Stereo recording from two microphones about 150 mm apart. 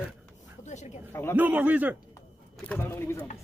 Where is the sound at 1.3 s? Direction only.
10° right (ahead or behind).